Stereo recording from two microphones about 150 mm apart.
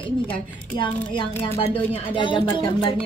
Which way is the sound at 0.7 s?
35° left (ahead or behind).